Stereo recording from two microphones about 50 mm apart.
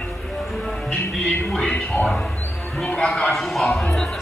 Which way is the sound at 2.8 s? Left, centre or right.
Left.